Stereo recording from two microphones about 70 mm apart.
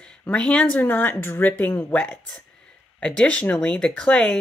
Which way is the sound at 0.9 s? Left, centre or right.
Left.